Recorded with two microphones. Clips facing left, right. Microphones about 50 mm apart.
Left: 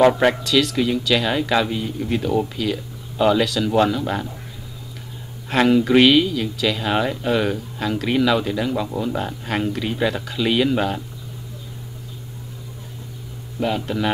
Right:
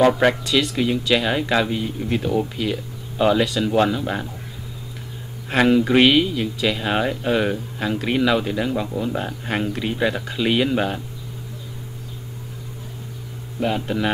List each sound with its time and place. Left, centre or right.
0.1 s speech: centre
0.5 s speech: centre
5.5 s speech: centre
7.3 s speech: centre
13.6 s speech: centre